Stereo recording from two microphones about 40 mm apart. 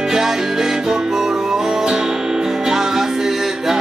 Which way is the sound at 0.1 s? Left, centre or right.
Centre.